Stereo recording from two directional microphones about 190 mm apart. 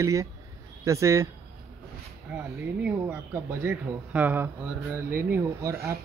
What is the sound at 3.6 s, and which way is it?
A man's voice, 10° right (ahead or behind).